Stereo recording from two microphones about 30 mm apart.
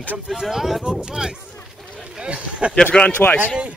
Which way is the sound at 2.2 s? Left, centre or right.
Right.